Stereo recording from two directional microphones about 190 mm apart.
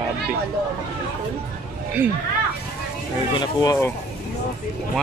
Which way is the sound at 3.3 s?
20° left (ahead or behind).